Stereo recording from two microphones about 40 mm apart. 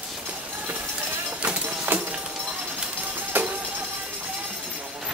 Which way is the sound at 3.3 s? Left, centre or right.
Right.